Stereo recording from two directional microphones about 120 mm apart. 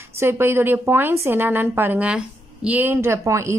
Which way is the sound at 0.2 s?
20° right (ahead or behind).